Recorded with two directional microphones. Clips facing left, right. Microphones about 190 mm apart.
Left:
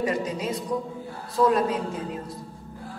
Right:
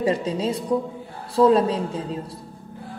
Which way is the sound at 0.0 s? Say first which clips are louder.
Right 4 dB; 30° right (ahead or behind).